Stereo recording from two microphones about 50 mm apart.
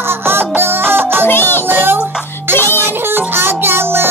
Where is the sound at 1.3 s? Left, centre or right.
Left.